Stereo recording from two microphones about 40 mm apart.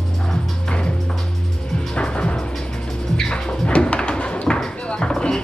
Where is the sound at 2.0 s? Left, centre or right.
Left.